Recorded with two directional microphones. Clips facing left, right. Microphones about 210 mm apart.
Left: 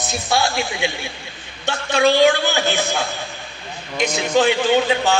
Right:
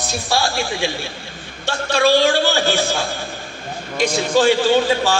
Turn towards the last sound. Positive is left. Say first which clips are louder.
# right 1 dB
turn(degrees=20)  # may be behind; listen again after turning